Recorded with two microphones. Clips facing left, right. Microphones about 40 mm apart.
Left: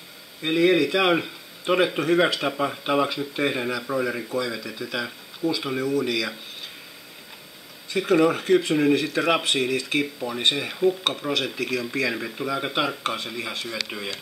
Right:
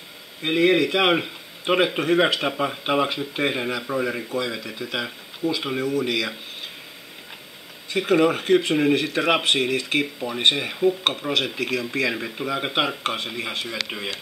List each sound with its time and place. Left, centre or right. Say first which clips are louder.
0.4 s speech: right 1 dB; centre
3.8 s speech: right 1 dB; centre
4.4 s speech: right 1 dB; right
5.8 s speech: left 1 dB; centre
6.0 s speech: right 1 dB; right
8.0 s speech: right 1 dB; centre
10.7 s speech: right 1 dB; centre
11.3 s speech: right 2 dB; right
11.8 s speech: right 1 dB; centre
12.4 s speech: right 1 dB; centre